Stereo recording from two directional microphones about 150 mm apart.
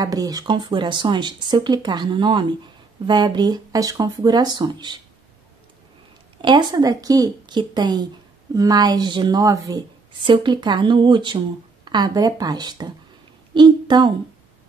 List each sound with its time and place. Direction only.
0.0 s speech: 25° right (ahead or behind)
6.4 s speech: 30° right (ahead or behind)
13.5 s a sound: 30° right (ahead or behind)